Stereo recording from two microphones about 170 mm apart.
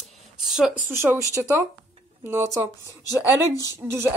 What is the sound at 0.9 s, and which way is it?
Speech, 15° right (ahead or behind).